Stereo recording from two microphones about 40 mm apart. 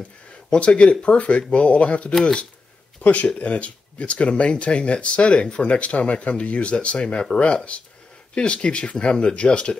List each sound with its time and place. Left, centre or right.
0.5 s speech: left